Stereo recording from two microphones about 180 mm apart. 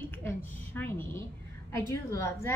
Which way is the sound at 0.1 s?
10° left (ahead or behind).